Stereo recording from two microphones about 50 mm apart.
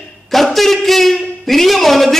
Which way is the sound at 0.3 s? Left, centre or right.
Centre.